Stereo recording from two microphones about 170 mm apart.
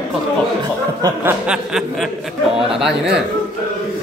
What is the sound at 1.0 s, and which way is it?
Chuckle, 15° right (ahead or behind).